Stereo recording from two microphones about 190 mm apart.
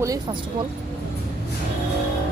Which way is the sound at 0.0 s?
20° right (ahead or behind).